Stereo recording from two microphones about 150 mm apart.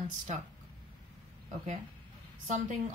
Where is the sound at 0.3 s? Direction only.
50° right (ahead or behind).